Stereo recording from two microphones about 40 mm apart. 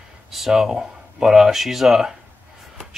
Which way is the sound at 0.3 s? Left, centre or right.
Centre.